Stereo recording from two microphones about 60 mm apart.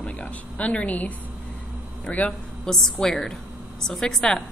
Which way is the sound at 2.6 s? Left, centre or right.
Centre.